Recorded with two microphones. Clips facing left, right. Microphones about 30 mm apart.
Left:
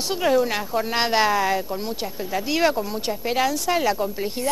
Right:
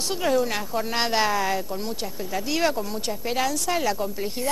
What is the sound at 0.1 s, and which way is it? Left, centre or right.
Speech, centre.